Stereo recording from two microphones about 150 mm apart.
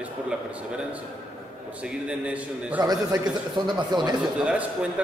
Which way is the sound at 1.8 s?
10° right (ahead or behind).